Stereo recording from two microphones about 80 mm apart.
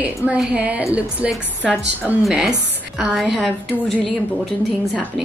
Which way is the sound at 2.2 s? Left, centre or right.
Centre.